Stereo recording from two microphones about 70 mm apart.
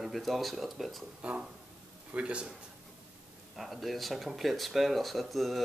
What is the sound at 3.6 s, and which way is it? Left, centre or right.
Speech, centre.